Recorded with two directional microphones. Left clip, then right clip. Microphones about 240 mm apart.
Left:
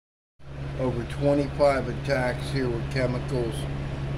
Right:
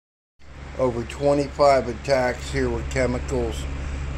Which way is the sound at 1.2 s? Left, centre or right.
Centre.